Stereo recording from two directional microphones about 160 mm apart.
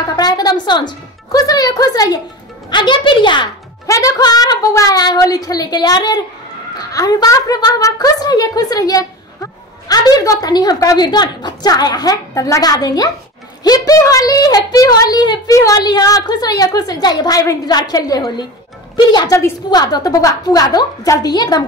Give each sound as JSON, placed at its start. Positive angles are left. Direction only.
{"t": 0.1, "sound": "a woman's voice", "side_deg": 25}